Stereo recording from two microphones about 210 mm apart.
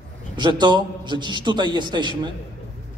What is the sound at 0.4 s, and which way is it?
A man's voice, 20° right (ahead or behind).